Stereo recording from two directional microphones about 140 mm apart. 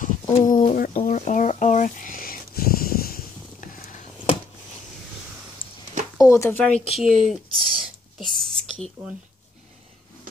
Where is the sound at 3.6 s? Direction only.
75° left (ahead or behind).